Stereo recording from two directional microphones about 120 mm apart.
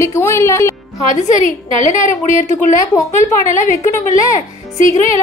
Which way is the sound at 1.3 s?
85° left.